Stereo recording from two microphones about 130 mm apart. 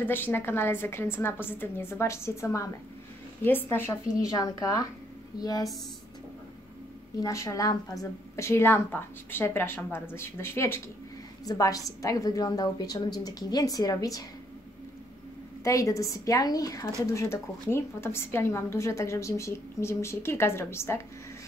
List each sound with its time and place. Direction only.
0.0 s a woman's voice: 15° left (ahead or behind); by 5.7 s 30° left (ahead or behind)
7.2 s a woman's voice: 25° left (ahead or behind)
15.6 s a woman's voice: 25° left (ahead or behind)